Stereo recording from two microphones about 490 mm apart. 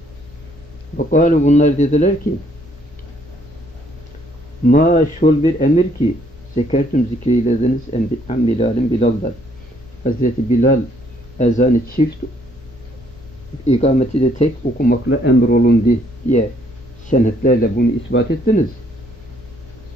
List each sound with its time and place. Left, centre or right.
0.9 s speech: centre
4.6 s speech: centre
13.7 s speech: centre
17.1 s speech: centre